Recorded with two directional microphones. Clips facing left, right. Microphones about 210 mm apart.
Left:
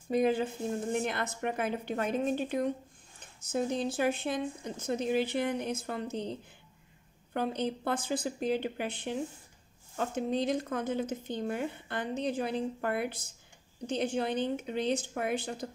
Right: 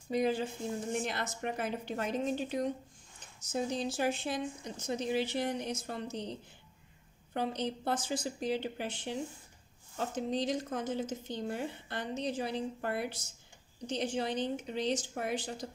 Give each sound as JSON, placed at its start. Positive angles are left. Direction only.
{"t": 0.1, "sound": "speech", "side_deg": 50}
{"t": 7.3, "sound": "speech", "side_deg": 55}